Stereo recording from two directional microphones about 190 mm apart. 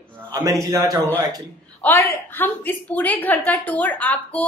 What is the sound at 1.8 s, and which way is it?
Speech, 10° left (ahead or behind).